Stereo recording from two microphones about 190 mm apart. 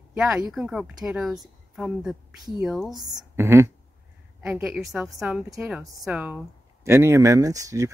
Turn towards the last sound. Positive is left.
turn(degrees=-15)  # may be behind; listen again after turning